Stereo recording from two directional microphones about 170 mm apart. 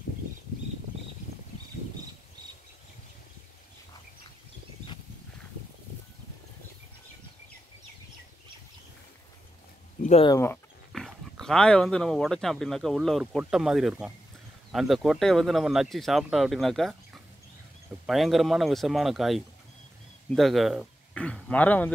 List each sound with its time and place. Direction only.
10.2 s speech: 15° left (ahead or behind)
10.9 s speech: centre (ahead or behind)
18.0 s speech: centre (ahead or behind)